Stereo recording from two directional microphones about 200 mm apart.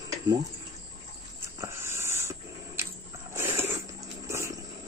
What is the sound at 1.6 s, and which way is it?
Dog, 15° right (ahead or behind).